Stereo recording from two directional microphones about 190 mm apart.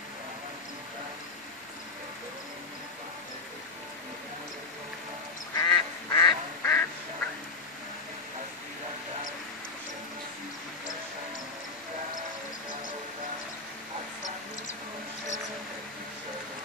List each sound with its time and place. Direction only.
5.5 s duck: 20° left (ahead or behind)